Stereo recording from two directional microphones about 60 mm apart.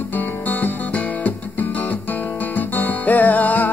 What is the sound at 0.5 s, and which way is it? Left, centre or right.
Music, left.